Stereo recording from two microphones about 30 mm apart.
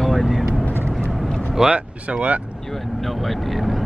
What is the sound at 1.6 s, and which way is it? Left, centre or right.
Speech, centre.